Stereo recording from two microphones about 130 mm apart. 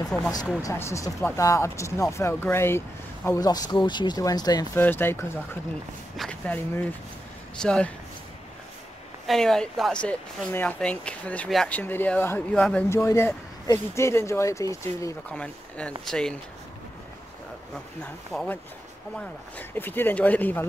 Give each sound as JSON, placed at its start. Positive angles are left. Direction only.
{"t": 0.1, "sound": "speech", "side_deg": 5}
{"t": 0.6, "sound": "speech", "side_deg": 25}
{"t": 3.3, "sound": "speech", "side_deg": 30}
{"t": 4.7, "sound": "speech", "side_deg": 15}
{"t": 9.2, "sound": "speech", "side_deg": 0}
{"t": 15.3, "sound": "speech", "side_deg": 10}
{"t": 18.3, "sound": "speech", "side_deg": 0}
{"t": 19.7, "sound": "speech", "side_deg": 15}